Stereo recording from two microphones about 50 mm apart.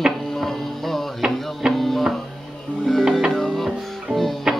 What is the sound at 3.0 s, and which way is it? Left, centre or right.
Music, centre.